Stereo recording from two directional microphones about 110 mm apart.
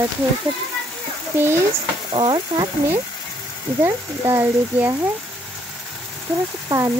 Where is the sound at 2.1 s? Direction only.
45° right (ahead or behind).